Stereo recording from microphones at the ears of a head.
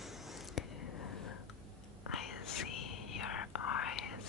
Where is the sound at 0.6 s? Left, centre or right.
Left.